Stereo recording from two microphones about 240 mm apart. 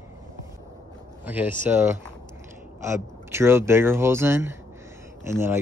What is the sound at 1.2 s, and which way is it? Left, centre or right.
Speech, centre.